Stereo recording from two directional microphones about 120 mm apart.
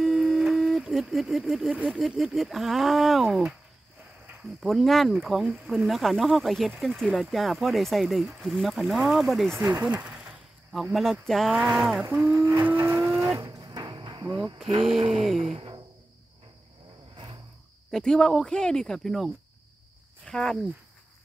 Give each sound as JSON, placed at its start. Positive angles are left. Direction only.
{"t": 0.0, "sound": "a sound", "side_deg": -5}
{"t": 1.9, "sound": "speech", "side_deg": 0}
{"t": 4.6, "sound": "speech", "side_deg": 0}
{"t": 9.8, "sound": "speech", "side_deg": -10}
{"t": 12.4, "sound": "vehicle", "side_deg": -20}
{"t": 13.1, "sound": "livestock", "side_deg": -25}
{"t": 14.3, "sound": "speech", "side_deg": 0}
{"t": 15.0, "sound": "a sound", "side_deg": -50}
{"t": 15.2, "sound": "speech", "side_deg": 5}
{"t": 15.5, "sound": "sigh", "side_deg": -40}
{"t": 17.9, "sound": "speech", "side_deg": 5}